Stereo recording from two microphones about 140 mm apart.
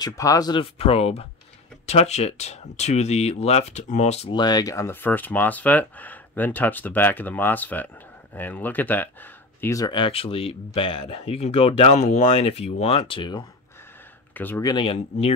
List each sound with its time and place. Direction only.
0.0 s speech: 25° left (ahead or behind)
0.7 s speech: 45° left (ahead or behind)
4.3 s speech: 30° left (ahead or behind)
14.3 s speech: 15° left (ahead or behind)
14.6 s speech: 30° left (ahead or behind)
14.9 s speech: 50° left (ahead or behind)